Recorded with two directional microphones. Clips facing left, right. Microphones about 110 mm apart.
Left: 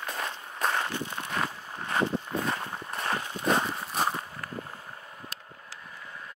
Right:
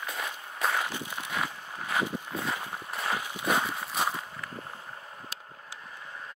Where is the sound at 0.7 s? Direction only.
10° right (ahead or behind).